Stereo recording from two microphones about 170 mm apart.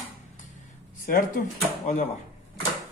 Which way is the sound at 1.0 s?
55° left (ahead or behind).